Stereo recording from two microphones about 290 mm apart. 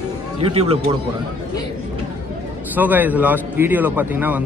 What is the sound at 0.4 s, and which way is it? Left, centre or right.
Speech, centre.